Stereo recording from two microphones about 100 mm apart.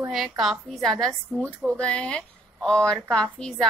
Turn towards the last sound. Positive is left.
turn(degrees=5)  # may be behind; listen again after turning